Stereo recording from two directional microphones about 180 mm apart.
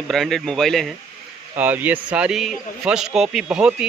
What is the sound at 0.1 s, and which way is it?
Speech, centre (ahead or behind).